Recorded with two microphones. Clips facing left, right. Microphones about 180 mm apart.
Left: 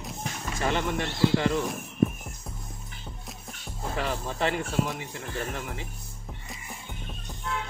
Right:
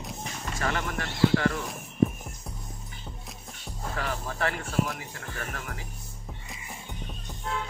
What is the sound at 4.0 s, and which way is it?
Speech, 20° left (ahead or behind).